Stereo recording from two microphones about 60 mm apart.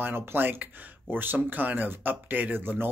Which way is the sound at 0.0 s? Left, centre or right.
Right.